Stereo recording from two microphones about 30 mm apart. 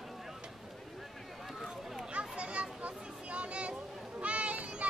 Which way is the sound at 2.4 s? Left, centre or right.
Right.